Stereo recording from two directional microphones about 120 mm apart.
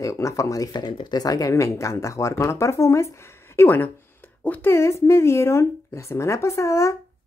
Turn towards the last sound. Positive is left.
turn(degrees=25)  # may be behind; listen again after turning